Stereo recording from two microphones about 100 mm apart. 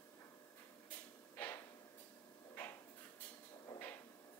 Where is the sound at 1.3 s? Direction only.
20° left (ahead or behind).